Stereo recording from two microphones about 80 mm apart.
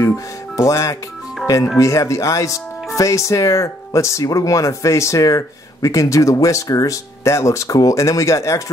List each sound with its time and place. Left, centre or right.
0.6 s speech: left